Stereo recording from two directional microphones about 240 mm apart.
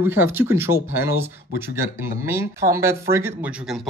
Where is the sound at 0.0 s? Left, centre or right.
Centre.